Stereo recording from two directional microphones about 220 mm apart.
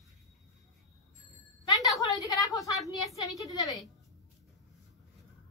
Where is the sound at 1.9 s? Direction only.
15° left (ahead or behind).